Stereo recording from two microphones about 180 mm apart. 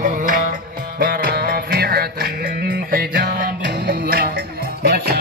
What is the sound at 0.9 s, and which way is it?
Music, 50° right (ahead or behind).